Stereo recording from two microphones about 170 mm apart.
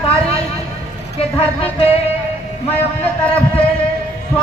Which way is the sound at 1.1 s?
35° left (ahead or behind).